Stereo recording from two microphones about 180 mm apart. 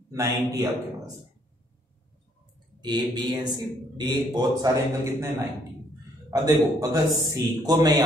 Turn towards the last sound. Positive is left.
turn(degrees=-20)  # may be behind; listen again after turning